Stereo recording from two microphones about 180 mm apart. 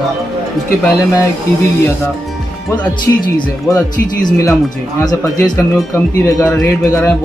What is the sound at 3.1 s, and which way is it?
Speech, 10° left (ahead or behind).